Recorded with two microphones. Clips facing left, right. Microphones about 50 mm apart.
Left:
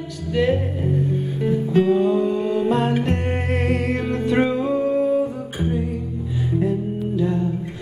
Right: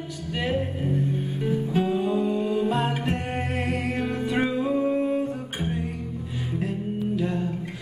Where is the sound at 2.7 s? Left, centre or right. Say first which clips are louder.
Left 5 dB; centre.